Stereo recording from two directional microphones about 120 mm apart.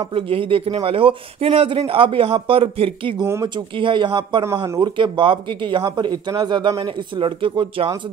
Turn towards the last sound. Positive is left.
turn(degrees=-45)  # may be behind; listen again after turning